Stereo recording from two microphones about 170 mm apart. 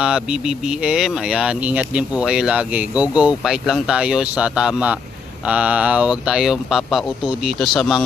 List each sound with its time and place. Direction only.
0.0 s speech: 5° right (ahead or behind)